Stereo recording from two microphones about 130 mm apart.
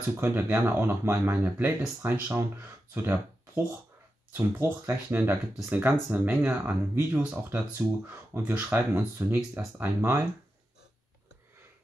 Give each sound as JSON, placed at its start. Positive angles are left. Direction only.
{"t": 0.2, "sound": "speech", "side_deg": -15}